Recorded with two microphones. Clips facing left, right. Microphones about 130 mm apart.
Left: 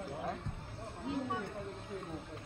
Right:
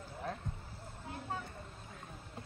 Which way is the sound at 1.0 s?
20° left (ahead or behind).